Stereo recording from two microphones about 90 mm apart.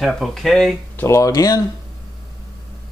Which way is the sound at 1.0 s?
35° left (ahead or behind).